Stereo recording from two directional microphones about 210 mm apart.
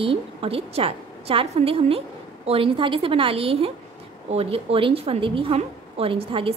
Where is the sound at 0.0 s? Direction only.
25° right (ahead or behind).